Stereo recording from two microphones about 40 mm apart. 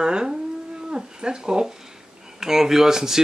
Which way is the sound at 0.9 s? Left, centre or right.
Centre.